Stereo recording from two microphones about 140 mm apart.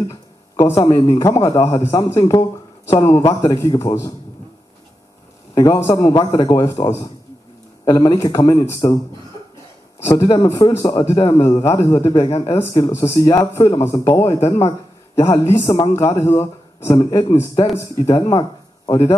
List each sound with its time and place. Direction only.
0.1 s a sound: 25° left (ahead or behind)
1.1 s a man's voice: 25° left (ahead or behind)
5.5 s a man's voice: 20° left (ahead or behind)
7.8 s a man's voice: 25° left (ahead or behind)
9.9 s a man's voice: 20° left (ahead or behind)
10.2 s a man's voice: 30° left (ahead or behind)